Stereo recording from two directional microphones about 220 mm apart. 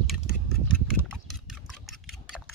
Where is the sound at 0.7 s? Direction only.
Centre (ahead or behind).